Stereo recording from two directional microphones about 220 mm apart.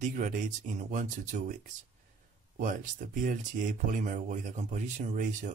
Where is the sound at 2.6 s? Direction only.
35° right (ahead or behind).